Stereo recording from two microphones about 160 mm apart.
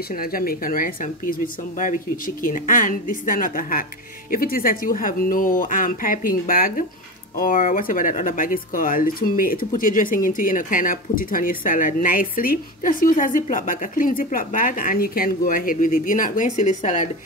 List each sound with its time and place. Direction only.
0.1 s speech: 65° left (ahead or behind)